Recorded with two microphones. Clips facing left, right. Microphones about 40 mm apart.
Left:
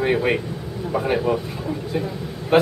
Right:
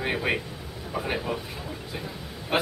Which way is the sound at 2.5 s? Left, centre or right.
Centre.